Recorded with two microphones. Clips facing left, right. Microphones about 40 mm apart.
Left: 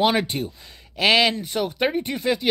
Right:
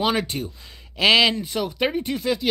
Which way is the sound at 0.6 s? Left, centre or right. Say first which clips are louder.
Right 4 dB; centre.